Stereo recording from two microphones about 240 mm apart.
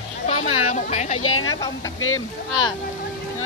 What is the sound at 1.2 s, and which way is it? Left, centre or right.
Speech, left.